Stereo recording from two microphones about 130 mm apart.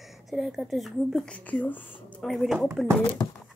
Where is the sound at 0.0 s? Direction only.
Centre (ahead or behind).